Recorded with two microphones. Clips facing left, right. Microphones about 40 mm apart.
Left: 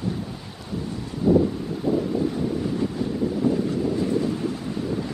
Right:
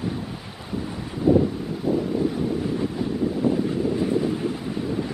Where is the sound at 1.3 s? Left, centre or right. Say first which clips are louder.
Even; centre.